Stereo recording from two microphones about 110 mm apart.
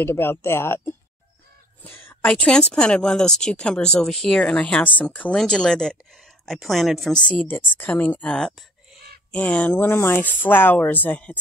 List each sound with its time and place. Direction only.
0.0 s a woman's voice: 20° left (ahead or behind)